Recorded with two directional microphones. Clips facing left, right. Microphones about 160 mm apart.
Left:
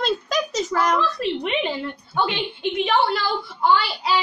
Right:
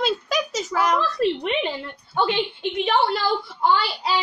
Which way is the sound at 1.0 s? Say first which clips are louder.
Right 1 dB; 40° right (ahead or behind).